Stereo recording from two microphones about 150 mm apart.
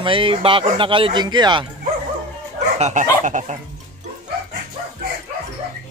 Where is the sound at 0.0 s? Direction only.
35° right (ahead or behind).